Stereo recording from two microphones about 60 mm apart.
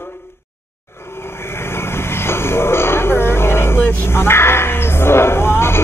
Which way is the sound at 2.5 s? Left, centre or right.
Left.